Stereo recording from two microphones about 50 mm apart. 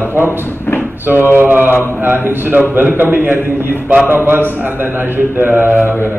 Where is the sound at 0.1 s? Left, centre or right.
Right.